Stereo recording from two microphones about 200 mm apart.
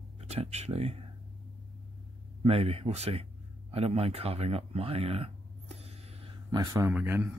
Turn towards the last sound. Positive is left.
turn(degrees=-10)  # may be behind; listen again after turning